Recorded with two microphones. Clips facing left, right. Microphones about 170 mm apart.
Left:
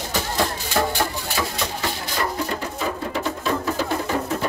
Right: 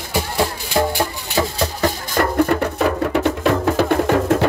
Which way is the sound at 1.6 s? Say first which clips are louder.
Right 7 dB; 50° right (ahead or behind).